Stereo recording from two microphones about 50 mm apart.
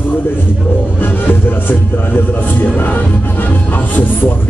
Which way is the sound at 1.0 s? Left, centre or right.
Left.